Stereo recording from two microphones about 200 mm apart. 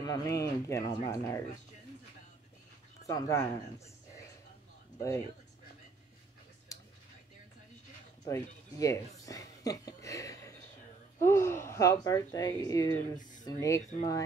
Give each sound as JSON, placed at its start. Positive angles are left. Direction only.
{"t": 0.0, "sound": "speech", "side_deg": 15}
{"t": 3.1, "sound": "speech", "side_deg": 15}
{"t": 4.9, "sound": "speech", "side_deg": 15}
{"t": 8.2, "sound": "speech", "side_deg": 15}
{"t": 13.2, "sound": "a sound", "side_deg": 40}
{"t": 13.5, "sound": "speech", "side_deg": 15}